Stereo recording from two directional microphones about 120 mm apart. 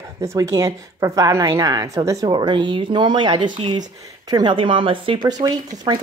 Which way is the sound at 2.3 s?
40° right (ahead or behind).